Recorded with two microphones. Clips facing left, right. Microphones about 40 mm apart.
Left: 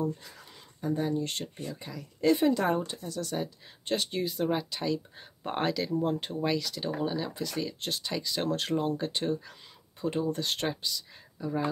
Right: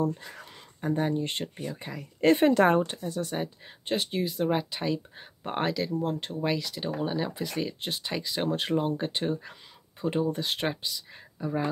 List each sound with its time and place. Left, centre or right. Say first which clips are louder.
0.2 s a sound: right 5 dB; right
1.2 s speech: right 3 dB; right
1.9 s speech: right 3 dB; right
3.0 s speech: right 2 dB; right
3.8 s speech: right 1 dB; centre
4.5 s speech: right 2 dB; centre
5.4 s speech: right 1 dB; centre
6.4 s speech: right 2 dB; centre
7.1 s speech: right 2 dB; centre
7.8 s speech: right 1 dB; centre